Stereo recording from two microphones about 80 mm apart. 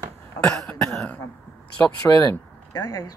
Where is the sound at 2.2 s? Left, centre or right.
Left.